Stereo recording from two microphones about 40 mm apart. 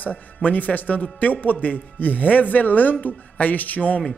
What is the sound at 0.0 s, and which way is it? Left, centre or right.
A man's voice, left.